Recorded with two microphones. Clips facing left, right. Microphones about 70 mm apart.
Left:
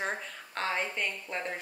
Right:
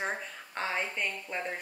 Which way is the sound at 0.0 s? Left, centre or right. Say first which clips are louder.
Even; centre.